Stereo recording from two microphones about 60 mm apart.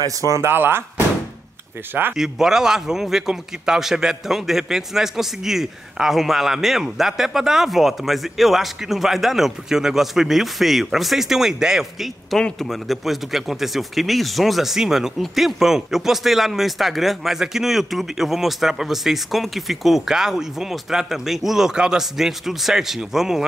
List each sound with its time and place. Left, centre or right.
0.0 s speech: right
0.5 s speech: right
2.1 s speech: centre